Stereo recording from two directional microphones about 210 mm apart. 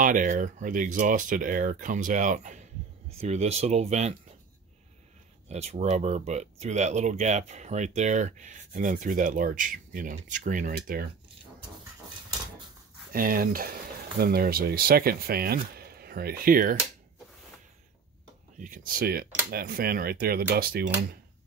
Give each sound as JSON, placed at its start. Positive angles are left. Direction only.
{"t": 0.0, "sound": "speech", "side_deg": -40}
{"t": 5.5, "sound": "speech", "side_deg": -30}
{"t": 13.1, "sound": "speech", "side_deg": -40}
{"t": 18.6, "sound": "speech", "side_deg": -40}